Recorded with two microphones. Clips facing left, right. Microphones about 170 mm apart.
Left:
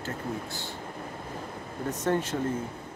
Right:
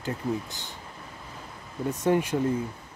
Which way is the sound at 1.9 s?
10° right (ahead or behind).